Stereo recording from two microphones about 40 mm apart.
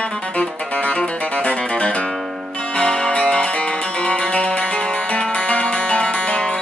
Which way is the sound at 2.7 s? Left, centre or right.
Left.